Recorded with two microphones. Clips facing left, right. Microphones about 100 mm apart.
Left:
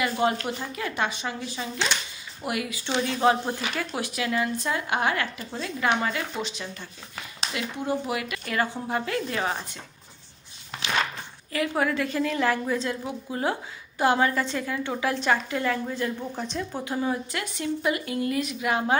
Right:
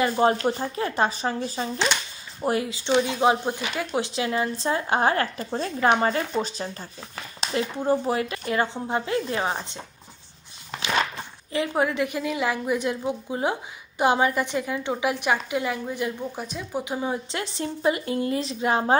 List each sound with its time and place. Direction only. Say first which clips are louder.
0.0 s speech: right 4 dB; 35° right (ahead or behind)
11.5 s a woman's voice: right 2 dB; 20° right (ahead or behind)